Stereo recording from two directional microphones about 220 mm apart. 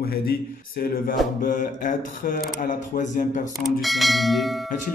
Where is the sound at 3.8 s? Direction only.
Centre (ahead or behind).